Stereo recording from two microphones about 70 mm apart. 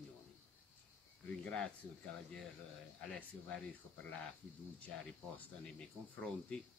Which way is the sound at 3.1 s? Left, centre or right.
Left.